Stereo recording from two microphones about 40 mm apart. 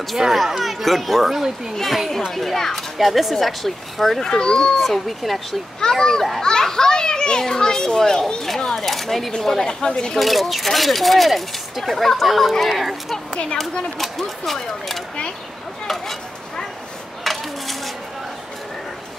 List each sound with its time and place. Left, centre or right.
0.3 s speech: centre
4.2 s a child's voice: centre
4.7 s speech: centre
5.8 s a child's voice: centre
6.4 s children playing: centre
7.9 s a sound: centre
9.6 s speech: centre
10.1 s speech: centre
17.2 s dishes: centre